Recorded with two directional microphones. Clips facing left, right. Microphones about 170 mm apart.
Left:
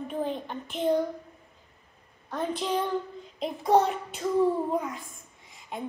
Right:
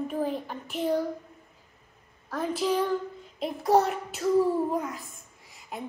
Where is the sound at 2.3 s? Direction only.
5° right (ahead or behind).